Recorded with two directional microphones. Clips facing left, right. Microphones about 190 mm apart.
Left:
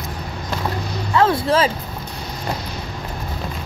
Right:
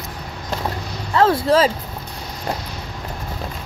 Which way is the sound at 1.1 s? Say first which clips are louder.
Right 2 dB; 35° right (ahead or behind).